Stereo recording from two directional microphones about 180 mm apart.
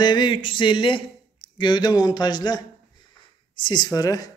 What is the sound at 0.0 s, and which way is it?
Speech, 25° left (ahead or behind).